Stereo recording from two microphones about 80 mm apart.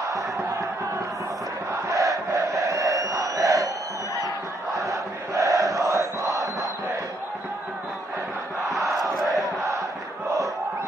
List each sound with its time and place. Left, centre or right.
0.0 s crowd: right
1.9 s crowd: right
4.7 s crowd: right
8.6 s crowd: centre